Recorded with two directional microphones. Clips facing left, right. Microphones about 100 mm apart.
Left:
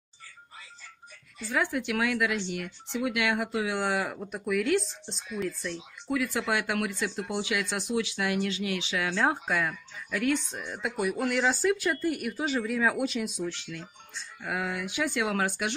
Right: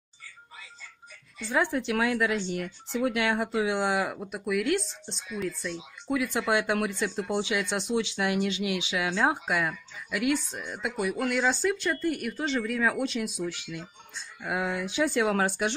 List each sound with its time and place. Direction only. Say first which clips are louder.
1.5 s speech: right 2 dB; 30° right (ahead or behind)
4.3 s speech: left 2 dB; centre (ahead or behind)
6.0 s speech: right 2 dB; 20° right (ahead or behind); by 13.6 s centre (ahead or behind)
13.6 s speech: right 2 dB; 10° right (ahead or behind)
14.4 s speech: right 2 dB; 20° right (ahead or behind)